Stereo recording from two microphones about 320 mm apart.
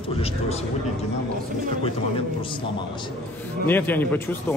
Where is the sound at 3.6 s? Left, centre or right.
Centre.